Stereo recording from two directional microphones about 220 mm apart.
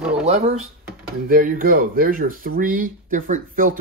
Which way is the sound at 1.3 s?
40° right (ahead or behind).